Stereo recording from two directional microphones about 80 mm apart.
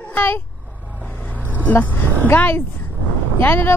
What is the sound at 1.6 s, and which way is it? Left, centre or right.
Speech, left.